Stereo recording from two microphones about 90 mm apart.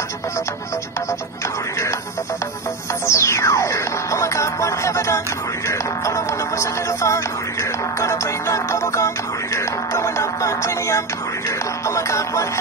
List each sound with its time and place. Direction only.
3.1 s music: 35° left (ahead or behind)